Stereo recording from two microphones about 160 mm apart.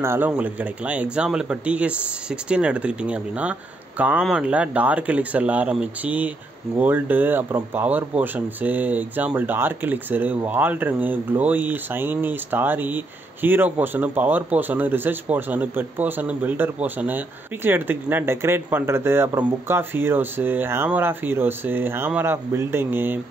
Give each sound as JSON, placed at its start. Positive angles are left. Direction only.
{"t": 0.0, "sound": "speech", "side_deg": -15}